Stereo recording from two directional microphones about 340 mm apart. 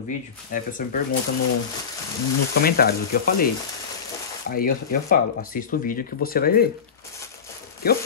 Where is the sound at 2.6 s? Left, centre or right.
Left.